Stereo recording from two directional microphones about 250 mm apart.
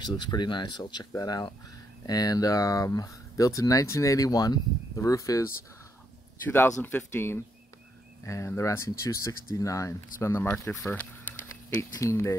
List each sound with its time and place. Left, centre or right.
0.0 s speech: centre
6.8 s speech: centre